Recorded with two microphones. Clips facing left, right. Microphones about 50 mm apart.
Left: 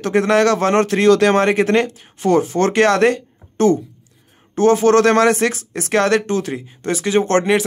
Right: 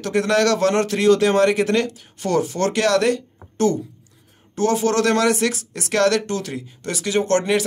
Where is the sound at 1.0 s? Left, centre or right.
Left.